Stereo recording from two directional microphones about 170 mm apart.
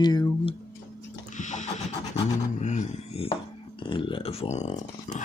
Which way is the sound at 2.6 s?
45° left (ahead or behind).